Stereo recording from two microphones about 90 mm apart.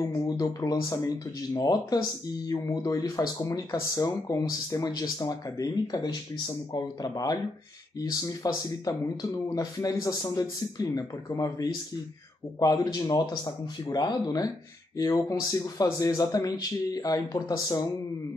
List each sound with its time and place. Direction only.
0.0 s speech: 40° left (ahead or behind)
12.5 s speech: 45° left (ahead or behind)
14.2 s speech: 45° left (ahead or behind)